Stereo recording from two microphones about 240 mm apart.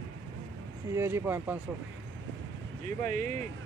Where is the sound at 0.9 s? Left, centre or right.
Centre.